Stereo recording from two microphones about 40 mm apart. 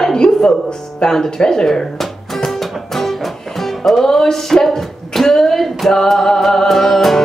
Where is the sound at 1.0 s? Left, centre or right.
Centre.